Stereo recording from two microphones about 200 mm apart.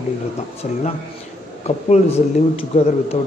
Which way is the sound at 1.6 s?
30° left (ahead or behind).